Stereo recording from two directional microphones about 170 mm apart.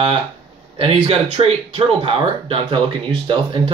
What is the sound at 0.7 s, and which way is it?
Speech, 35° right (ahead or behind).